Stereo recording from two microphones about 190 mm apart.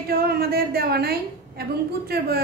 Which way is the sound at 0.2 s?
55° right (ahead or behind).